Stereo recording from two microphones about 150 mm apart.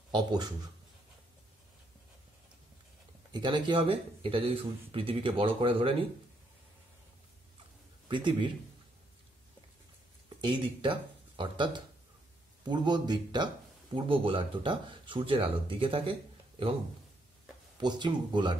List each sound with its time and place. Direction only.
0.1 s speech: 25° right (ahead or behind)
3.3 s speech: 30° right (ahead or behind)
8.1 s speech: 30° right (ahead or behind)
10.4 s speech: 35° right (ahead or behind)
17.7 s speech: 30° right (ahead or behind)